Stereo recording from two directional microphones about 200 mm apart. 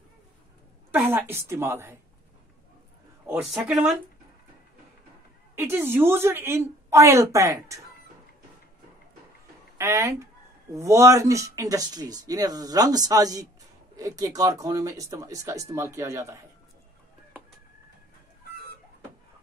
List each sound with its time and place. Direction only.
0.9 s speech: 10° right (ahead or behind)
3.3 s speech: 5° right (ahead or behind)
5.6 s speech: 10° right (ahead or behind)
9.8 s speech: 15° right (ahead or behind)